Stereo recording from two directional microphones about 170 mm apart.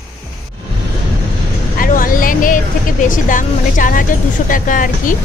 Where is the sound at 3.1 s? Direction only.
50° left (ahead or behind).